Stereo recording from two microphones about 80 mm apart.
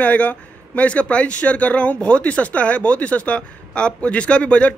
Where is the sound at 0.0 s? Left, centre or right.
Centre.